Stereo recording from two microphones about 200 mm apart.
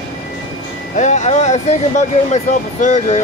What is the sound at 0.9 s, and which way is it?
Speech, 35° left (ahead or behind).